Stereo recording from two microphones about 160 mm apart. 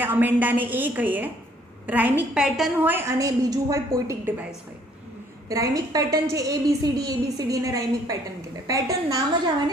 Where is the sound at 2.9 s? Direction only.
15° right (ahead or behind).